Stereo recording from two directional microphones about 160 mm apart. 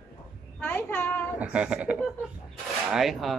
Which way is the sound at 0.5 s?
10° left (ahead or behind).